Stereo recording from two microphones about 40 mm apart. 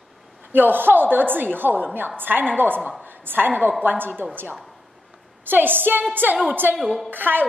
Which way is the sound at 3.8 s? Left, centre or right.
Right.